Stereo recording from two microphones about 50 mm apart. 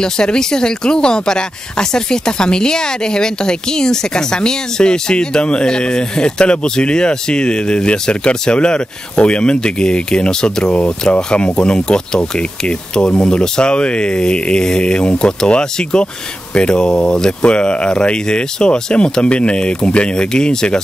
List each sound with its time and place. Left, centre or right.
0.0 s speech: centre